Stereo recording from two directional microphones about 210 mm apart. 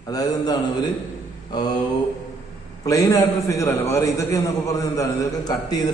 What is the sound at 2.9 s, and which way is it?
A man's voice, 15° left (ahead or behind).